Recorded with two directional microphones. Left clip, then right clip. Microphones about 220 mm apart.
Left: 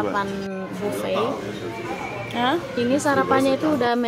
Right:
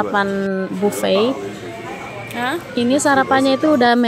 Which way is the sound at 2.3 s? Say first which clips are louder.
Even; centre (ahead or behind).